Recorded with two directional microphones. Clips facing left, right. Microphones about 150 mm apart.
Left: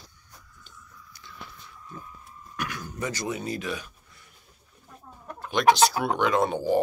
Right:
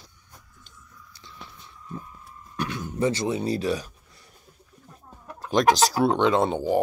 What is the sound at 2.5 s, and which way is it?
Speech, 25° right (ahead or behind).